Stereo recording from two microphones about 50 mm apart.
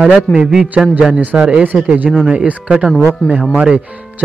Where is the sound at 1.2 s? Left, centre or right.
Right.